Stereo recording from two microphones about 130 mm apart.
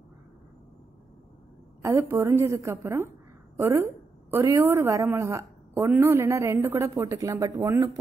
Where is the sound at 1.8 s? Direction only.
20° right (ahead or behind).